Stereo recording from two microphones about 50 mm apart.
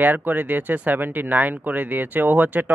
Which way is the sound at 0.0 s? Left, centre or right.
Right.